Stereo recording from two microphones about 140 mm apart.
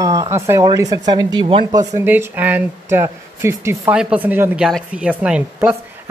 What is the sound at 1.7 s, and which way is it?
A woman's voice, 25° right (ahead or behind).